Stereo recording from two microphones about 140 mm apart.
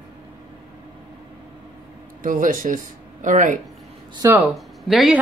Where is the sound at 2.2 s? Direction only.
75° right (ahead or behind).